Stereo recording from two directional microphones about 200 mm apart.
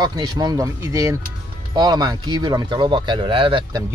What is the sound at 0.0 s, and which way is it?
Speech, 20° right (ahead or behind).